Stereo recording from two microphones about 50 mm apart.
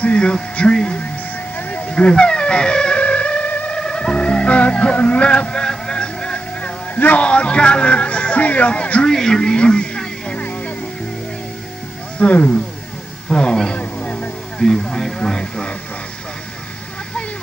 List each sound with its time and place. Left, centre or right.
0.0 s speech: centre
1.7 s wail: left
3.0 s music: left
3.7 s music: centre
7.2 s speech: left
9.0 s speech: centre
12.2 s speech: left
13.3 s a sound: centre
14.6 s speech: centre